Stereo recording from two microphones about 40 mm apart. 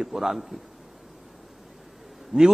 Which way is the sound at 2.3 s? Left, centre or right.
Centre.